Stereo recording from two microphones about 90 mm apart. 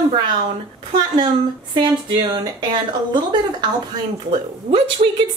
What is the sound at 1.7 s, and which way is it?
A woman's voice, 55° right (ahead or behind).